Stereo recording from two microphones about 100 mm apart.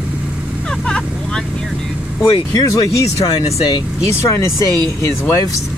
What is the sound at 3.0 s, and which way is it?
Speech, 90° left.